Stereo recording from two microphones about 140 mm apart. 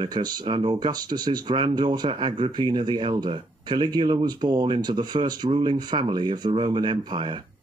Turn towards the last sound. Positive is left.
turn(degrees=-35)  # may be behind; listen again after turning